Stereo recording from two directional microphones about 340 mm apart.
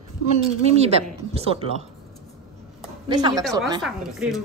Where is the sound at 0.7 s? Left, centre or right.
Centre.